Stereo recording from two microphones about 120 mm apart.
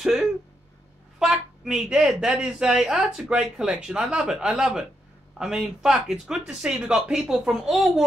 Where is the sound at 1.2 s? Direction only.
5° right (ahead or behind).